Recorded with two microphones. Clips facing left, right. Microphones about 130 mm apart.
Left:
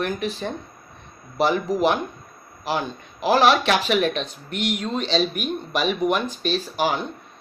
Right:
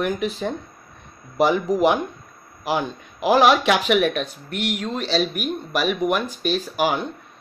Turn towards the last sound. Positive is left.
turn(degrees=-10)  # may be behind; listen again after turning